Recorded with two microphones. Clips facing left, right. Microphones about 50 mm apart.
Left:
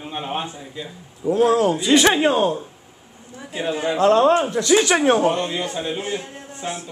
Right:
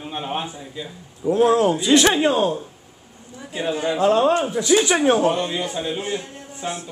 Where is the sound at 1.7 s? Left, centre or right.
Centre.